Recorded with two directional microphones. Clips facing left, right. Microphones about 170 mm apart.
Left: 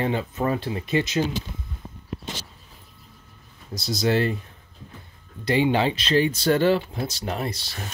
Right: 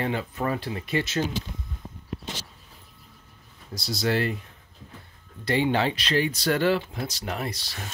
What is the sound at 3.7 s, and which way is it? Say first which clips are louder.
Speech: left 3 dB; 20° left (ahead or behind).